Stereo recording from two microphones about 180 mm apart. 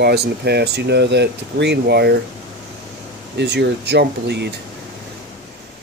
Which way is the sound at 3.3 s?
70° right (ahead or behind).